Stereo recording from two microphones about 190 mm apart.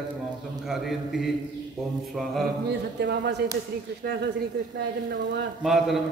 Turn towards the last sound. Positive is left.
turn(degrees=0)  # may be behind; listen again after turning